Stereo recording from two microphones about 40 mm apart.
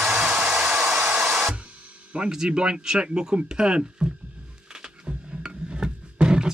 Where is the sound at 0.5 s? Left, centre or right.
Centre.